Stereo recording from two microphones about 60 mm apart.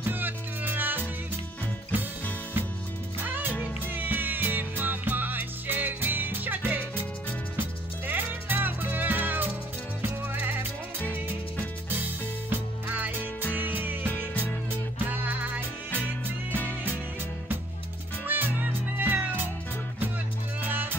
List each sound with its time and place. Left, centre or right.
0.0 s music: right
3.2 s music: right
8.1 s music: right
18.2 s music: right
20.6 s music: right